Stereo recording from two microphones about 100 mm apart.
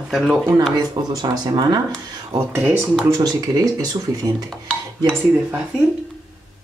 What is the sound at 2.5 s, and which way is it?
Speech, 20° right (ahead or behind).